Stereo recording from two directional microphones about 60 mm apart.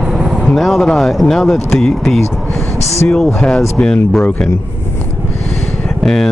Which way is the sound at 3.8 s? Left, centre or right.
Centre.